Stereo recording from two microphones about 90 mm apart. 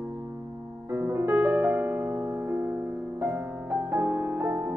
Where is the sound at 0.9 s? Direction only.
30° right (ahead or behind).